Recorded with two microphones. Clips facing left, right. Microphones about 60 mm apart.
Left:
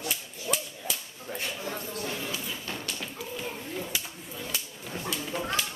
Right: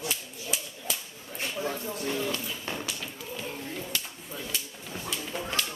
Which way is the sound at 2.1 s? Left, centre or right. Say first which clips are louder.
Right 3 dB; centre.